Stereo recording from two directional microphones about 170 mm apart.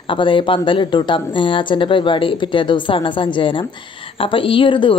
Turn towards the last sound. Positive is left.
turn(degrees=30)  # may be behind; listen again after turning